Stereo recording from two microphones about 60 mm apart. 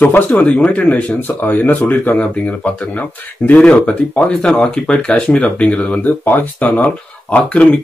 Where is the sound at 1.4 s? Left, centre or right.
Left.